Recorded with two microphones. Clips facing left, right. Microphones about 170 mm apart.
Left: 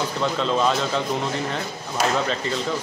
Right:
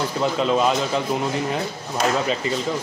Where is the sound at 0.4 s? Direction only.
10° right (ahead or behind).